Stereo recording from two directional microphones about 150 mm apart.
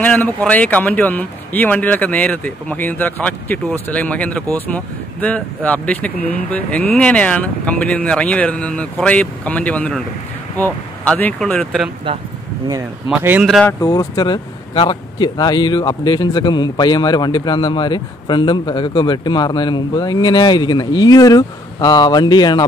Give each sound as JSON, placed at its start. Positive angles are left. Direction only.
{"t": 0.0, "sound": "speech", "side_deg": 10}
{"t": 12.6, "sound": "speech", "side_deg": -25}
{"t": 13.3, "sound": "speech", "side_deg": 0}
{"t": 13.7, "sound": "speech", "side_deg": 20}